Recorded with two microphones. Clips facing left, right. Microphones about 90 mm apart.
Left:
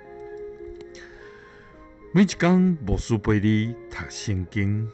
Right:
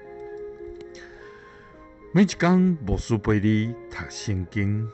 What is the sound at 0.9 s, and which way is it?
Music, centre (ahead or behind).